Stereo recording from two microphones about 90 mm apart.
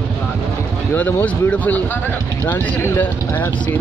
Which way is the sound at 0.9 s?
20° left (ahead or behind).